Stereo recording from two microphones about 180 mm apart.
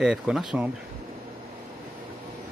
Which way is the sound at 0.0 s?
5° right (ahead or behind).